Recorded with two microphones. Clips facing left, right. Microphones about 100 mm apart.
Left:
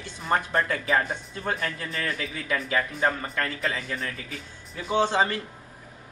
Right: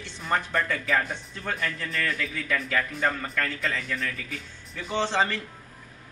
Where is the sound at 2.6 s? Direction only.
30° left (ahead or behind).